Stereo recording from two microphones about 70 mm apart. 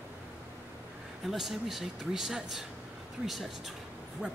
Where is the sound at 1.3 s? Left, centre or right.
Centre.